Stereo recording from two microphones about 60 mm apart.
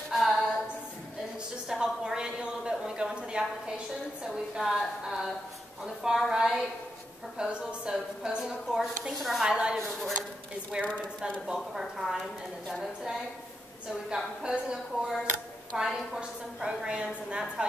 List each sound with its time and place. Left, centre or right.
0.1 s a capella: centre
1.7 s a sound: centre
4.3 s a sound: centre
7.3 s a woman's voice: centre
9.4 s a woman's voice: centre
10.8 s a woman's voice: centre
14.1 s a woman's voice: centre